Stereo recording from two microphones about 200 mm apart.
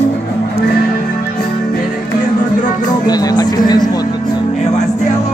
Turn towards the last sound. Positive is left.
turn(degrees=20)  # may be behind; listen again after turning